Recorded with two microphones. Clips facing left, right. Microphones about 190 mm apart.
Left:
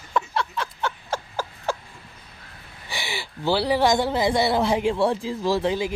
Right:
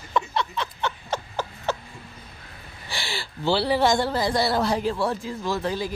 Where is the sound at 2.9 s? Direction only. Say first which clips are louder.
Left 1 dB; 15° left (ahead or behind).